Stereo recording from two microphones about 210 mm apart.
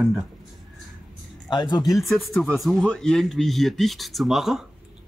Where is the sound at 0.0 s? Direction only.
Centre (ahead or behind).